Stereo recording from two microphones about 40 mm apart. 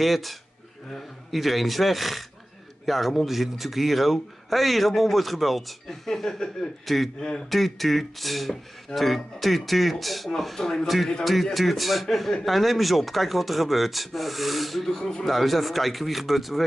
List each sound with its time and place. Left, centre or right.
0.0 s speech: centre
7.4 s speech: centre
11.5 s speech: centre
15.0 s speech: centre
15.3 s speech: centre